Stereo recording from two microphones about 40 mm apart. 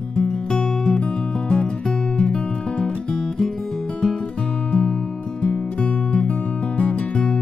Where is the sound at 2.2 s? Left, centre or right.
Left.